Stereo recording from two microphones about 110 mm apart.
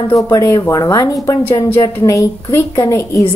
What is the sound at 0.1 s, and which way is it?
A woman's voice, 35° left (ahead or behind).